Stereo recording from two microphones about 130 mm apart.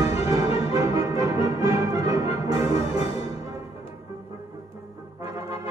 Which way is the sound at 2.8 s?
50° left (ahead or behind).